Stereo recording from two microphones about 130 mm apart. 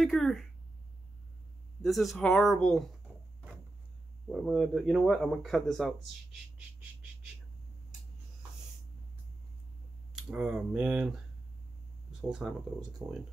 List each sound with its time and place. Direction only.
0.0 s speech: centre (ahead or behind)
1.8 s speech: centre (ahead or behind)
4.3 s speech: centre (ahead or behind)
10.1 s speech: 5° right (ahead or behind)
13.0 s speech: 30° right (ahead or behind)